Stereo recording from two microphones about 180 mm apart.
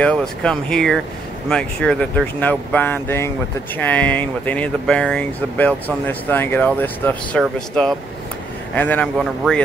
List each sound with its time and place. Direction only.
0.0 s speech: 5° left (ahead or behind)